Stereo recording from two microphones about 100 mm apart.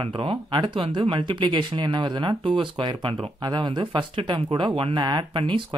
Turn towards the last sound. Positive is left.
turn(degrees=-55)  # may be behind; listen again after turning